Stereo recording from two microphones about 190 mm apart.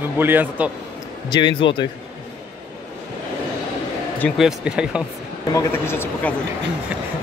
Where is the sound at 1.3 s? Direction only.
25° left (ahead or behind).